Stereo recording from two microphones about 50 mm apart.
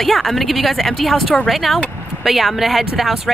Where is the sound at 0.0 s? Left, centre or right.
Centre.